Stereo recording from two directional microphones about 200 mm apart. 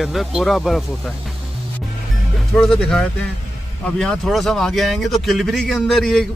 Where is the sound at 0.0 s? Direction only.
Centre (ahead or behind).